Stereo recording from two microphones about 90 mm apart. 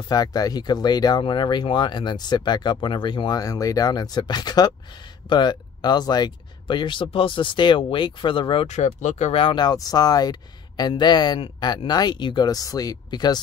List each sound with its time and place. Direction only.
0.1 s speech: 45° left (ahead or behind)
3.3 s speech: 40° left (ahead or behind); by 9.7 s 75° left (ahead or behind)
9.7 s speech: 45° left (ahead or behind)
12.4 s speech: 45° left (ahead or behind)